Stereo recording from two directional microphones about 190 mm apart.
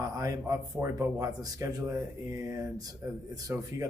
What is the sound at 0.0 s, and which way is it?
Speech, 15° right (ahead or behind).